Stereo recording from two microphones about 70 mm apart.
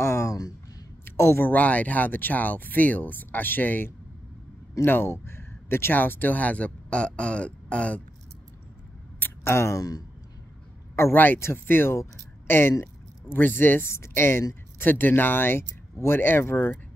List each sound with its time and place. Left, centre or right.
0.0 s a sound: left
1.0 s speech: left
1.5 s speech: left
9.4 s speech: left
11.0 s speech: left